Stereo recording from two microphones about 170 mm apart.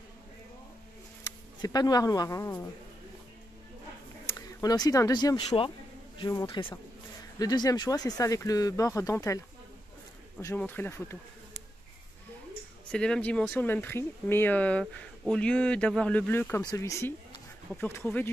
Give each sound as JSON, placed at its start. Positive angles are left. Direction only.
{"t": 1.6, "sound": "speech", "side_deg": 20}
{"t": 4.6, "sound": "speech", "side_deg": 20}
{"t": 10.4, "sound": "speech", "side_deg": 10}
{"t": 12.9, "sound": "speech", "side_deg": 5}